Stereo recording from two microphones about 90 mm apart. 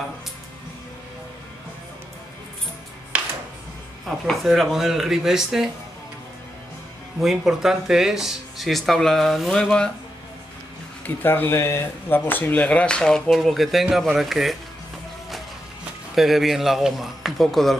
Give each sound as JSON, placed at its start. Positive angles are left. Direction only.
{"t": 4.3, "sound": "speech", "side_deg": 0}
{"t": 7.2, "sound": "speech", "side_deg": -5}
{"t": 11.2, "sound": "speech", "side_deg": 25}
{"t": 13.3, "sound": "speech", "side_deg": 0}
{"t": 16.2, "sound": "speech", "side_deg": 0}